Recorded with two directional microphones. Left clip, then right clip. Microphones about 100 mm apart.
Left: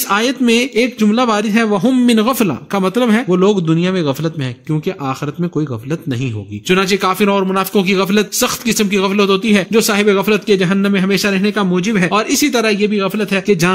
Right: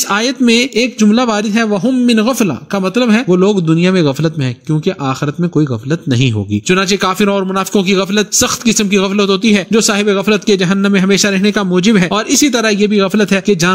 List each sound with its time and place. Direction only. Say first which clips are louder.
0.1 s speech: right 1 dB; 15° right (ahead or behind)
2.0 s a man's voice: right 1 dB; 10° left (ahead or behind)
3.3 s a man's voice: right 2 dB; 20° right (ahead or behind)
9.4 s speech: right 2 dB; 45° right (ahead or behind)
9.7 s speech: left 2 dB; 15° right (ahead or behind)
10.5 s speech: right 2 dB; 40° right (ahead or behind)
11.7 s speech: right 4 dB; 55° right (ahead or behind)
12.1 s a man's voice: right 2 dB; 20° right (ahead or behind)
12.7 s speech: right 4 dB; 35° right (ahead or behind)
13.5 s speech: left 1 dB; 10° right (ahead or behind)